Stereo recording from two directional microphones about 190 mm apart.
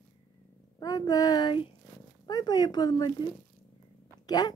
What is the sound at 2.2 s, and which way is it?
Speech, 20° left (ahead or behind).